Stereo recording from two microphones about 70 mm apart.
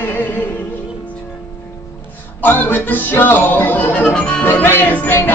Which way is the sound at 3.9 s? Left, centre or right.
Centre.